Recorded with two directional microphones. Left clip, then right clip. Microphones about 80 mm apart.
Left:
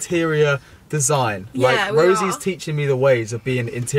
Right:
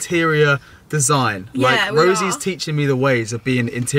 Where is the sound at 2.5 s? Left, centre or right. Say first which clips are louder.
Right 1 dB; right.